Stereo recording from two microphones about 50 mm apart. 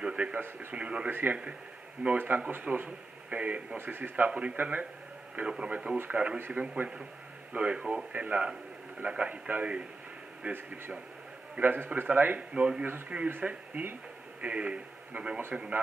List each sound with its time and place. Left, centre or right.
0.0 s a sound: right
0.4 s a man's voice: right
0.7 s a man's voice: right
1.1 s a man's voice: right
3.7 s a man's voice: right
4.3 s a man's voice: right
4.6 s speech: right
5.3 s a man's voice: right
11.6 s speech: right
12.4 s a man's voice: right